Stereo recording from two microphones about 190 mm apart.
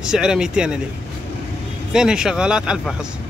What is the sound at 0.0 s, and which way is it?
Speech, 5° right (ahead or behind).